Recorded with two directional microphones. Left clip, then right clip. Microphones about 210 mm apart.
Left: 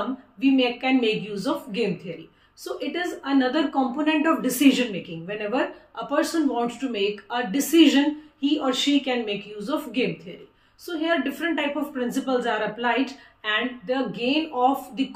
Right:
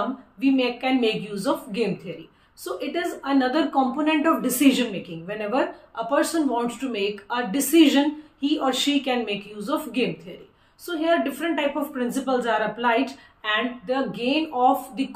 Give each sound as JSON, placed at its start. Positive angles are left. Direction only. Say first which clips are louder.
{"t": 0.4, "sound": "a woman's voice", "louder": "left 1 dB", "side_deg": 0}
{"t": 11.0, "sound": "a woman's voice", "louder": "right 2 dB", "side_deg": -5}